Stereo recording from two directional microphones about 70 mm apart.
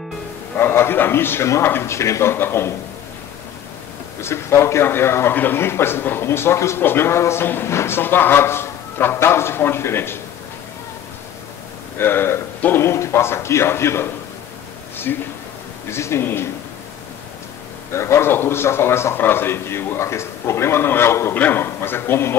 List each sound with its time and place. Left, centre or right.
0.6 s a man's voice: left
4.2 s a man's voice: left
12.0 s a man's voice: left
15.9 s a man's voice: left
17.9 s a man's voice: left